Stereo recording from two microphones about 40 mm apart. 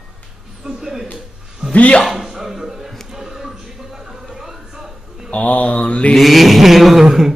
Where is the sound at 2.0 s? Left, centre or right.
Centre.